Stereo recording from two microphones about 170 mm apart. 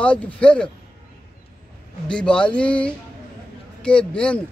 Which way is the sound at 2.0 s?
5° left (ahead or behind).